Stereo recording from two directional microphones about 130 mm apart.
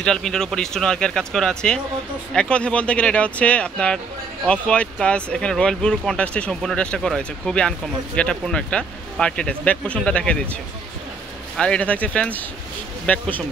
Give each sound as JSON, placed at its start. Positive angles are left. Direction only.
{"t": 0.0, "sound": "speech", "side_deg": 5}